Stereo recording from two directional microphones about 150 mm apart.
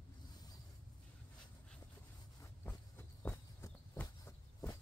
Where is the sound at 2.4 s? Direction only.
15° left (ahead or behind).